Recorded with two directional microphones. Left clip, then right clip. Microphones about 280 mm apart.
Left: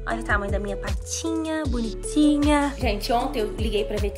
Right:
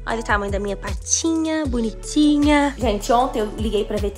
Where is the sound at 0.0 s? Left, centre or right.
Centre.